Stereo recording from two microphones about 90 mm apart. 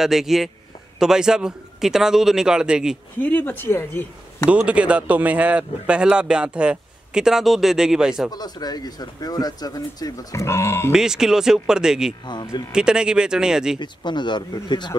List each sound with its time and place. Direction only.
0.0 s a man's voice: 5° right (ahead or behind)
3.2 s speech: 20° left (ahead or behind)
4.5 s speech: 15° right (ahead or behind)
8.3 s speech: 50° left (ahead or behind); by 10.9 s 30° left (ahead or behind)
10.9 s speech: 5° right (ahead or behind)
13.7 s speech: 55° left (ahead or behind)